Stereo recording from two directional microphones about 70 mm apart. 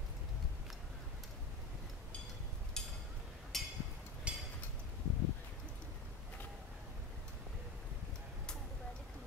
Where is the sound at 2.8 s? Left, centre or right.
Centre.